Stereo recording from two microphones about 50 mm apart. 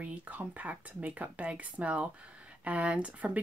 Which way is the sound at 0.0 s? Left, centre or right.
Right.